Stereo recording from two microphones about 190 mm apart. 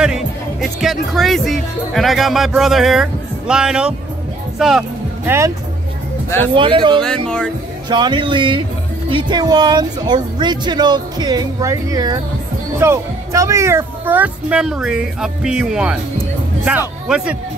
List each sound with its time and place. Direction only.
0.0 s speech: 5° right (ahead or behind)
4.6 s music: centre (ahead or behind)
6.5 s speech: 25° right (ahead or behind)
7.2 s speech: 5° left (ahead or behind)
7.9 s speech: 25° right (ahead or behind); by 17.4 s 5° right (ahead or behind)